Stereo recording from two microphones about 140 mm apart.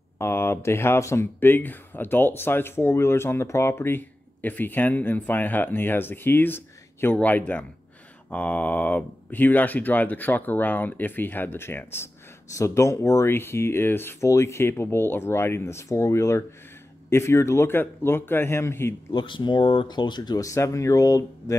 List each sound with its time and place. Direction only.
0.2 s speech: 20° left (ahead or behind)
19.1 s speech: 35° left (ahead or behind)